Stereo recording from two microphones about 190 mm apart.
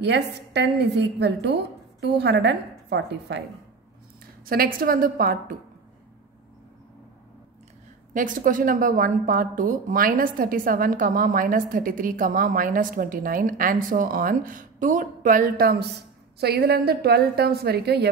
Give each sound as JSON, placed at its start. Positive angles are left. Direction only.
{"t": 0.0, "sound": "a woman's voice", "side_deg": -60}
{"t": 4.5, "sound": "a woman's voice", "side_deg": -50}
{"t": 8.1, "sound": "a woman's voice", "side_deg": -45}